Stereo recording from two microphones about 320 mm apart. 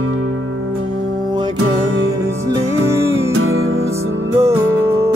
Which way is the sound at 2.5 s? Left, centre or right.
Centre.